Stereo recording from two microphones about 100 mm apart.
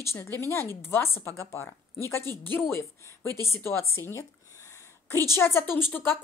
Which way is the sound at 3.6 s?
30° left (ahead or behind).